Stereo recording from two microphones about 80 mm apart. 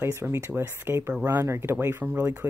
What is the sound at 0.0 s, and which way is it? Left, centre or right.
Speech, right.